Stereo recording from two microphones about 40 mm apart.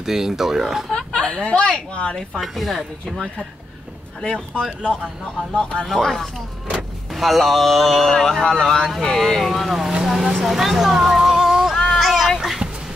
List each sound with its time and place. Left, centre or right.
0.0 s speech: centre
1.1 s speech: left
2.4 s speech: centre
4.8 s speech: left
5.9 s speech: centre
11.2 s a sound: centre
12.0 s child singing: centre
12.4 s music: centre